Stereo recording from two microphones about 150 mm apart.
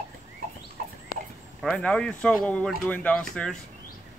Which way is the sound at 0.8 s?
75° right (ahead or behind).